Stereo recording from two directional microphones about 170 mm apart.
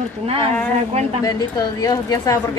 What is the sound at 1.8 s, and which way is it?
Speech, 20° left (ahead or behind).